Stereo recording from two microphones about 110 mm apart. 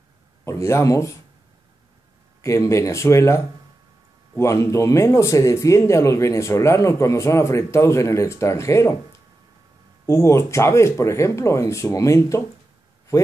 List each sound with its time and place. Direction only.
0.5 s speech: 25° left (ahead or behind)
2.4 s speech: 30° left (ahead or behind)
10.0 s speech: 25° left (ahead or behind)